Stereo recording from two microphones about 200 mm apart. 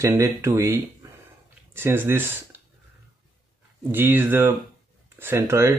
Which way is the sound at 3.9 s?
10° right (ahead or behind).